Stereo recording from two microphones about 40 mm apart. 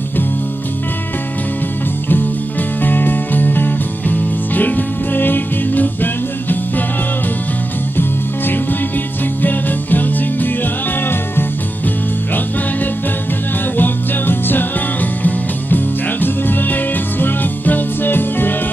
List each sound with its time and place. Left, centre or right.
2.8 s music: left
9.4 s music: left
13.7 s music: left